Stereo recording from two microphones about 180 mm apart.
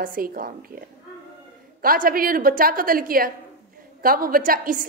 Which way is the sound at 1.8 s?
55° right (ahead or behind).